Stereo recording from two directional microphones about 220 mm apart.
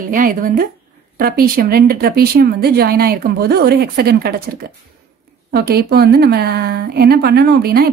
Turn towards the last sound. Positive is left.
turn(degrees=-45)  # may be behind; listen again after turning